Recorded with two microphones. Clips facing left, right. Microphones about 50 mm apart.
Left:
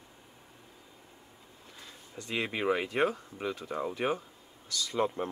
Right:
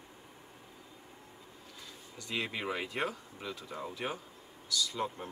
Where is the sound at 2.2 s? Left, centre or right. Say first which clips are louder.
Left 4 dB; left.